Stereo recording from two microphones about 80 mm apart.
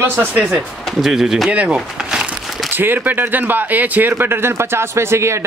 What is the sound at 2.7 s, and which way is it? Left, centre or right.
Speech, right.